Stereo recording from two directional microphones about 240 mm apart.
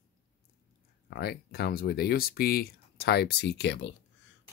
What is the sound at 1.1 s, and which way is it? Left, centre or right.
Speech, left.